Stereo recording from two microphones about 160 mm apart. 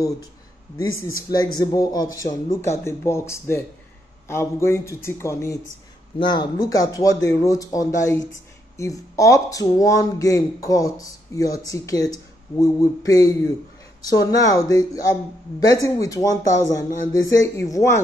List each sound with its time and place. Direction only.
1.3 s a man's voice: 25° left (ahead or behind)